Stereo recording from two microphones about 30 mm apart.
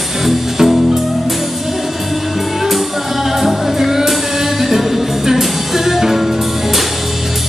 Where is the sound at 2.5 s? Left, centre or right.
Centre.